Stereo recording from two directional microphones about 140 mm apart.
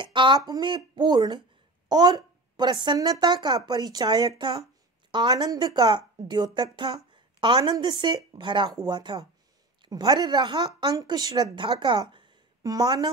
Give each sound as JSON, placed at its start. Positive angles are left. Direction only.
{"t": 0.0, "sound": "a woman's voice", "side_deg": -35}